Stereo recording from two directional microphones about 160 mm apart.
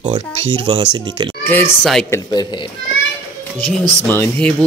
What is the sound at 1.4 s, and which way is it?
Speech, 15° left (ahead or behind).